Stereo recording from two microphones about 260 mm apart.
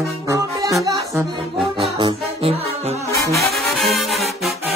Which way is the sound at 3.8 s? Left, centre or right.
Centre.